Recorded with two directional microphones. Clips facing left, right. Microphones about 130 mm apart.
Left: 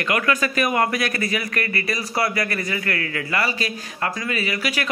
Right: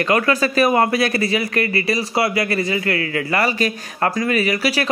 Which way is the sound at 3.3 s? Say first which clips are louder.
Right 5 dB; 40° right (ahead or behind).